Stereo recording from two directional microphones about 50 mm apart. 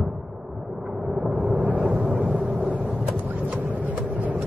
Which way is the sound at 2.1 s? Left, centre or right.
Right.